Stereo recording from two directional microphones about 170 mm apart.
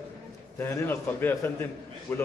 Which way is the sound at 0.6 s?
10° left (ahead or behind).